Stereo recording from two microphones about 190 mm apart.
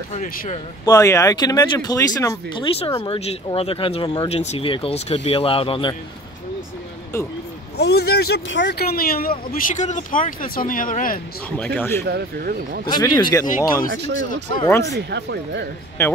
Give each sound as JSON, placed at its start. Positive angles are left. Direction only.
{"t": 0.1, "sound": "speech", "side_deg": 40}
{"t": 0.8, "sound": "speech", "side_deg": 15}
{"t": 7.7, "sound": "speech", "side_deg": 60}
{"t": 11.5, "sound": "speech", "side_deg": 10}
{"t": 12.1, "sound": "speech", "side_deg": -55}
{"t": 12.8, "sound": "speech", "side_deg": 20}
{"t": 14.7, "sound": "speech", "side_deg": 15}
{"t": 15.0, "sound": "speech", "side_deg": -65}
{"t": 16.0, "sound": "speech", "side_deg": 15}